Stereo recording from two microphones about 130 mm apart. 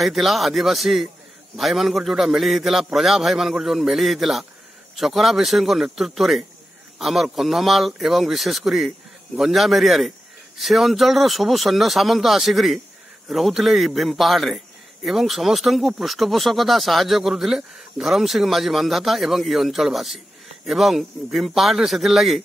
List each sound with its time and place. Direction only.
0.0 s speech: centre (ahead or behind)